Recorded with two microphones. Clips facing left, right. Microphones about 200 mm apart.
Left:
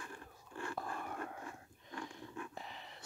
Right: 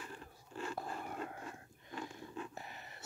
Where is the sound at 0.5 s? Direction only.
20° right (ahead or behind).